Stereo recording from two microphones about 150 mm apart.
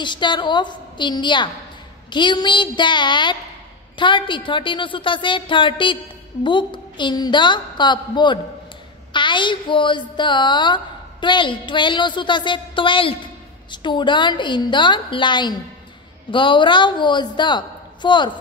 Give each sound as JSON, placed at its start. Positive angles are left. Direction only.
{"t": 0.0, "sound": "a woman's voice", "side_deg": 30}